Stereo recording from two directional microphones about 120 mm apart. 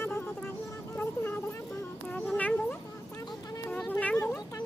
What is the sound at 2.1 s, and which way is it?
Cat, 15° left (ahead or behind).